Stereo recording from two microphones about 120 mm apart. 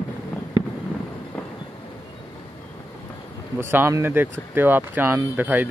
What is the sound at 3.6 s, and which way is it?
Speech, 20° right (ahead or behind).